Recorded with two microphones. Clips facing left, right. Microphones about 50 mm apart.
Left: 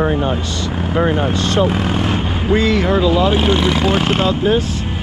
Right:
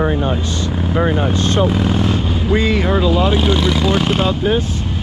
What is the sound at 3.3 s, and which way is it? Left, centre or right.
Speech, left.